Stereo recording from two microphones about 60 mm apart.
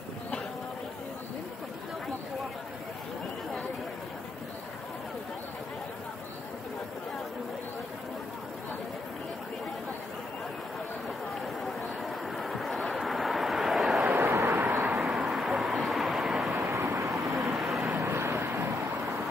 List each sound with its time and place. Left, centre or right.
11.6 s vehicle: centre
14.1 s vehicle: right
14.9 s vehicle: centre
16.5 s vehicle: right
17.1 s vehicle: centre
17.9 s vehicle: right